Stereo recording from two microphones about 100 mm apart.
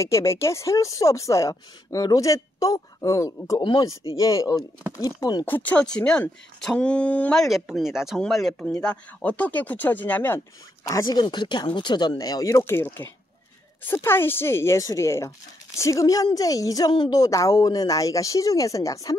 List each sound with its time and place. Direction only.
0.0 s speech: 30° left (ahead or behind)
5.4 s speech: 20° left (ahead or behind)
7.4 s speech: centre (ahead or behind)
8.8 s speech: 10° left (ahead or behind); by 11.1 s 30° left (ahead or behind)
11.1 s speech: 50° left (ahead or behind)
12.6 s speech: 25° left (ahead or behind)